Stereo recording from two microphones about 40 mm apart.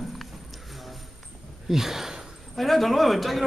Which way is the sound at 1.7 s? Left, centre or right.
Centre.